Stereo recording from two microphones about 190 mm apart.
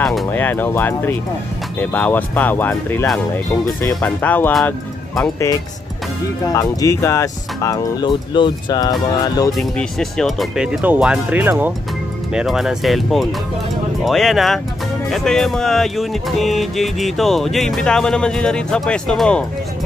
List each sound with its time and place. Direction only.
0.0 s speech: centre (ahead or behind)
6.4 s speech: 20° left (ahead or behind)
9.5 s music: centre (ahead or behind)